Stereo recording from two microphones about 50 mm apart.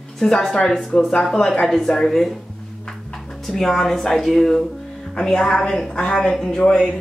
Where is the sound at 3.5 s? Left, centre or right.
Centre.